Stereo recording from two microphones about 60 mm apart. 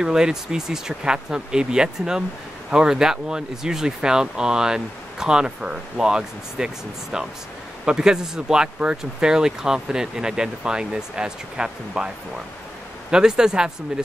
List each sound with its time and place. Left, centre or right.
0.0 s speech: centre
13.1 s speech: centre